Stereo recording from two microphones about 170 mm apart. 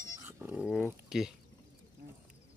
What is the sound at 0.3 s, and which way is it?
Goat, 10° right (ahead or behind).